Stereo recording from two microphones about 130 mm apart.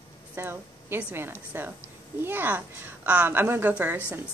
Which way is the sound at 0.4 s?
15° right (ahead or behind).